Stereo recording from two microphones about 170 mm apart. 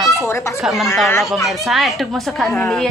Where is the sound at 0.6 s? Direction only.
Centre (ahead or behind).